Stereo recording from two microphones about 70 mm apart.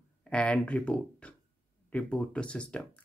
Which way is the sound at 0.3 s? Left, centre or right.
Centre.